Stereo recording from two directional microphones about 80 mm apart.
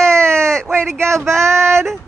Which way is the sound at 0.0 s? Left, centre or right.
Centre.